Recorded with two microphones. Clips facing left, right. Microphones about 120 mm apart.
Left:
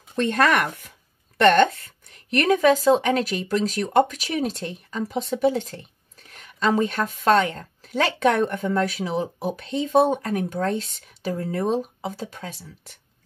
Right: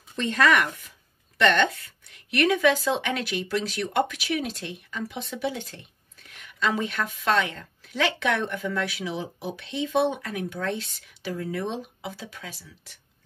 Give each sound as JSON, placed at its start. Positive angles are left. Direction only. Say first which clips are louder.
{"t": 0.1, "sound": "a woman's voice", "louder": "left 2 dB", "side_deg": 50}